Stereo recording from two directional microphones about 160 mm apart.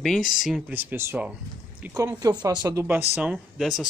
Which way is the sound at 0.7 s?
15° right (ahead or behind).